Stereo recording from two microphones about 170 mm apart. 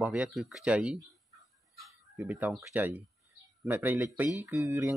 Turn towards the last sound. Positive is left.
turn(degrees=-15)  # may be behind; listen again after turning